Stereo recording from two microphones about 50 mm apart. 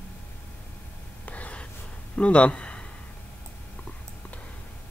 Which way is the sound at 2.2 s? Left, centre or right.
Left.